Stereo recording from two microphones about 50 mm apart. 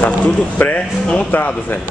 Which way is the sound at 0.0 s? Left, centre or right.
Left.